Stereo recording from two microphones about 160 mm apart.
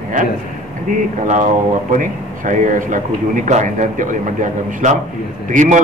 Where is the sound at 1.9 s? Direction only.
55° right (ahead or behind).